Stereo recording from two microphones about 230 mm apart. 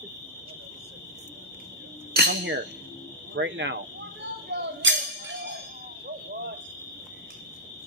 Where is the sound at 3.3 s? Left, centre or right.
Right.